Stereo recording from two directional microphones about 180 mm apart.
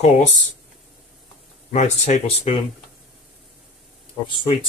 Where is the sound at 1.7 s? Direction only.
40° left (ahead or behind).